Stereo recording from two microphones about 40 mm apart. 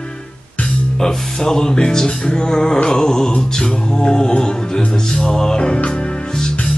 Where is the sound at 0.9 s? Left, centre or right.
Centre.